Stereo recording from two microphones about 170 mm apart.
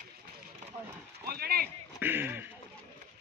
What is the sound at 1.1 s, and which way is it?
Clip-clop, 65° right (ahead or behind).